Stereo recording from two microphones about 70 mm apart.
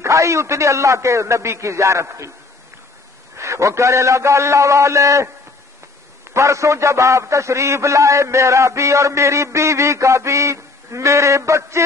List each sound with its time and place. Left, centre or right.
0.0 s a man's voice: right
3.3 s a man's voice: right